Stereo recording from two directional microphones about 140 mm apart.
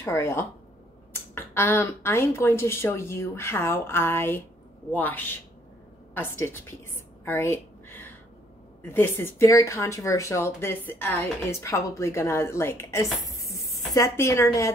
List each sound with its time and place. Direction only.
0.0 s a woman's voice: 20° left (ahead or behind)